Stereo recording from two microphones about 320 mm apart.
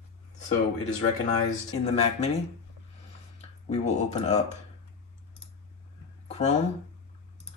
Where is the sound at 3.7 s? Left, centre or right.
Left.